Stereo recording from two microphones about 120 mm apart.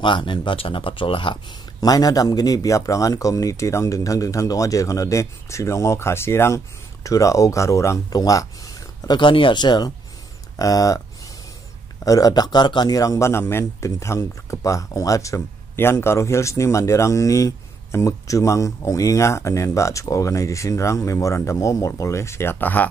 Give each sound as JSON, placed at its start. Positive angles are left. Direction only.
{"t": 0.0, "sound": "speech", "side_deg": 45}
{"t": 12.0, "sound": "speech", "side_deg": 30}